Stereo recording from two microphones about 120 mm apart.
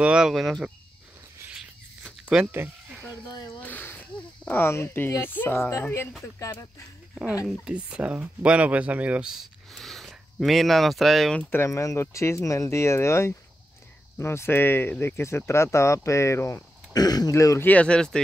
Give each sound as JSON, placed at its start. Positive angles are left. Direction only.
{"t": 0.0, "sound": "speech", "side_deg": -5}
{"t": 2.0, "sound": "a sound", "side_deg": -10}
{"t": 2.5, "sound": "sheep", "side_deg": -20}
{"t": 3.1, "sound": "speech", "side_deg": 30}
{"t": 3.6, "sound": "a sound", "side_deg": 15}
{"t": 4.5, "sound": "speech", "side_deg": 20}
{"t": 7.4, "sound": "speech", "side_deg": -10}
{"t": 11.5, "sound": "speech", "side_deg": 25}
{"t": 17.6, "sound": "speech", "side_deg": 10}